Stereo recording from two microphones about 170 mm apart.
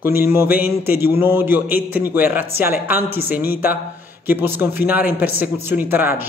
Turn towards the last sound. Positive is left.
turn(degrees=-10)  # may be behind; listen again after turning